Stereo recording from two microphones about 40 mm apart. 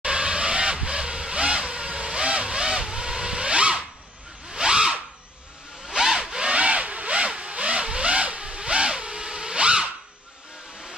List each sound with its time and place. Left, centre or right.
0.0 s vehicle: right
2.0 s zipper: right
4.5 s drill: right
5.9 s tools: centre
6.5 s a sound: right